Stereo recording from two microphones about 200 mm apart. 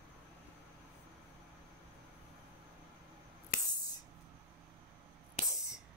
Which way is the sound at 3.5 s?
45° left (ahead or behind).